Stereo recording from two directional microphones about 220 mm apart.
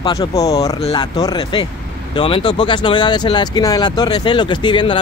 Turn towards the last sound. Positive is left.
turn(degrees=20)  # may be behind; listen again after turning